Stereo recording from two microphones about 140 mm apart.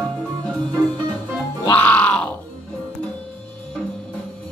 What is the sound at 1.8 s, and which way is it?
Music, 10° left (ahead or behind).